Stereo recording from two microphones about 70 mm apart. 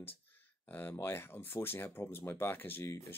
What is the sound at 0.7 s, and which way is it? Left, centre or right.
Speech, left.